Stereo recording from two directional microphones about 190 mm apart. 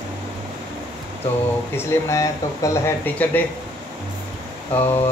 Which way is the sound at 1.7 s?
15° left (ahead or behind).